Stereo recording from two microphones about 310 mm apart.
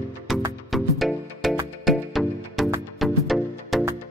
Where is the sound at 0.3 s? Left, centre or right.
Centre.